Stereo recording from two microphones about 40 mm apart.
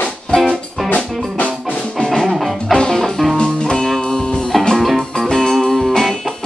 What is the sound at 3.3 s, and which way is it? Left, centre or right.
Music, centre.